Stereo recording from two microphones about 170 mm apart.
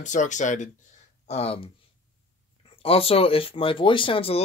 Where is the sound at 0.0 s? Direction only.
45° left (ahead or behind).